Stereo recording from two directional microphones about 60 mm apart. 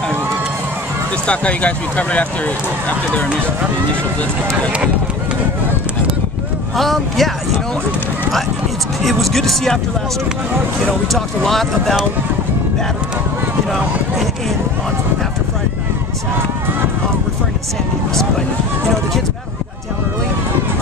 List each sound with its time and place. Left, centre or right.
1.2 s speech: left
6.8 s speech: centre
9.0 s speech: centre
11.1 s speech: centre